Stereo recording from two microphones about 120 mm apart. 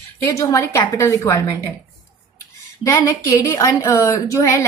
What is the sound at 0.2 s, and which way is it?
A woman's voice, 25° left (ahead or behind).